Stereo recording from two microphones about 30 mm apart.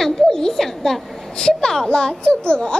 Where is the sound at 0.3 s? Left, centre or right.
Centre.